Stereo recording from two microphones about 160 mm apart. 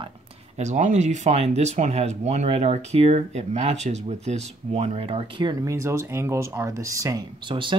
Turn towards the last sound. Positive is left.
turn(degrees=-30)  # may be behind; listen again after turning